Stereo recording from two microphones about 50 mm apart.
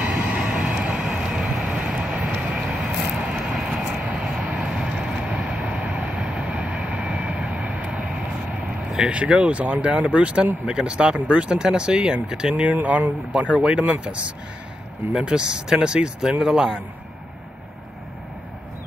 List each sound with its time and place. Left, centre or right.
0.0 s vehicle: right; by 4.4 s centre
4.4 s vehicle: right
4.6 s vehicle: centre
8.9 s speech: centre
9.2 s speech: right
12.7 s speech: right
15.1 s speech: centre